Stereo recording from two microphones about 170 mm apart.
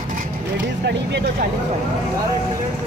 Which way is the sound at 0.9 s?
90° right.